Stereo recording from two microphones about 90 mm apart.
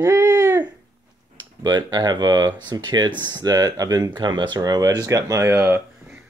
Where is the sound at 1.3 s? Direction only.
55° right (ahead or behind).